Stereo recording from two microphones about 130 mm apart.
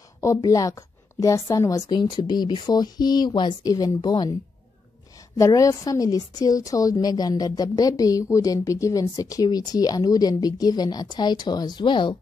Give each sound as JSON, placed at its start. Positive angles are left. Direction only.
{"t": 0.2, "sound": "a woman's voice", "side_deg": 25}
{"t": 5.4, "sound": "a woman's voice", "side_deg": 25}